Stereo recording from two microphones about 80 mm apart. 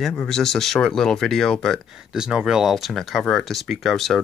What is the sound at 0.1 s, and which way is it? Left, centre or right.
Speech, centre.